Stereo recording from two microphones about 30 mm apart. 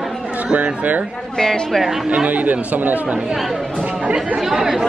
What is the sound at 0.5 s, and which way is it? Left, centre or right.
Speech, right.